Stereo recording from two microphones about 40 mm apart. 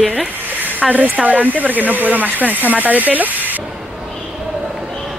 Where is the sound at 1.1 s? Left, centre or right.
Right.